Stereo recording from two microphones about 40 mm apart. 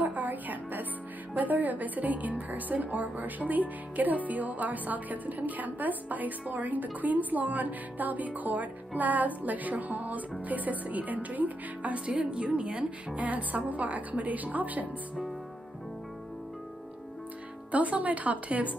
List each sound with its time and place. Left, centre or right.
0.0 s music: right
1.3 s a woman's voice: right
12.1 s a woman's voice: right
17.6 s a woman's voice: right